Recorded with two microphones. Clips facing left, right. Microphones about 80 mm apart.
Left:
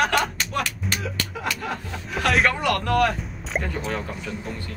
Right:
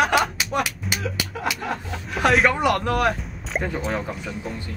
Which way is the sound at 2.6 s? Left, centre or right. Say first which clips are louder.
Right 1 dB; centre.